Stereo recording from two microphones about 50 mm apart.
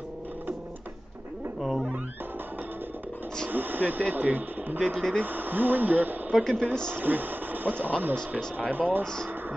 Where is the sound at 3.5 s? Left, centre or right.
Right.